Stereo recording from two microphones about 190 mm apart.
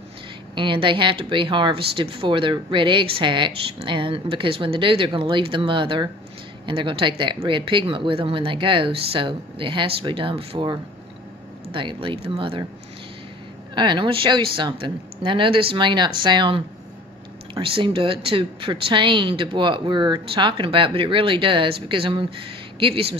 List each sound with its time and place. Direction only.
0.6 s speech: 25° right (ahead or behind)
13.7 s speech: 25° right (ahead or behind)